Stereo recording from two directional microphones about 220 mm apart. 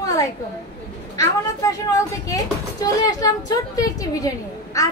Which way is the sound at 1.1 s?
15° left (ahead or behind).